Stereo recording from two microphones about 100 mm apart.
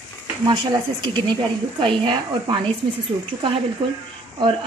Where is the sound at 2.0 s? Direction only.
60° right (ahead or behind).